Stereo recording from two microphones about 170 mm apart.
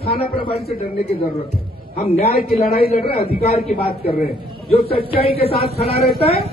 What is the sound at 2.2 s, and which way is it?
A man's voice, 60° left (ahead or behind).